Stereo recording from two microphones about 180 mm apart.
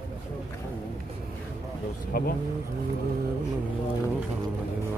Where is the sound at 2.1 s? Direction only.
55° left (ahead or behind).